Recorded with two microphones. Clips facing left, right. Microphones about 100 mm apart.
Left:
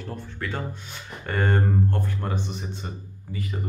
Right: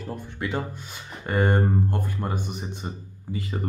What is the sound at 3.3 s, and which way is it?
Speech, 30° right (ahead or behind).